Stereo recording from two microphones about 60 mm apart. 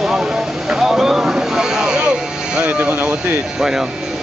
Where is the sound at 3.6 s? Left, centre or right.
Centre.